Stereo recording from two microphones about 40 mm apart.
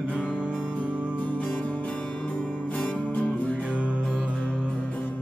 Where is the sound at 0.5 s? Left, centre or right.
Left.